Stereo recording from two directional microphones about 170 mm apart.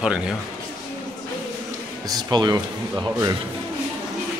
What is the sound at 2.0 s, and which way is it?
Speech, 25° right (ahead or behind).